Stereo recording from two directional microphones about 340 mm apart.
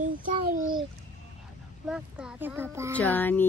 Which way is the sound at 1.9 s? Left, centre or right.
Centre.